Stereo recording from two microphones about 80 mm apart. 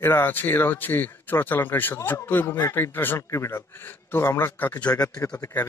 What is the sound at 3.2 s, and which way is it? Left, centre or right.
Speech, left.